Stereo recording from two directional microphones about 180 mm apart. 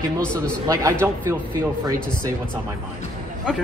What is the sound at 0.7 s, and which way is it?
Speech, 20° right (ahead or behind).